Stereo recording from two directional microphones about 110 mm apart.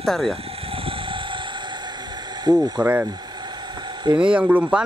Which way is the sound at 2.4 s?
35° right (ahead or behind).